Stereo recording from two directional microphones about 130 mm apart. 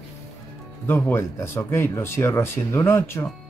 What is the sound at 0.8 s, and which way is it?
Speech, 20° left (ahead or behind).